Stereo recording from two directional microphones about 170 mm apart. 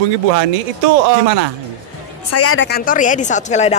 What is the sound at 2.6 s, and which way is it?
Speech, 60° left (ahead or behind).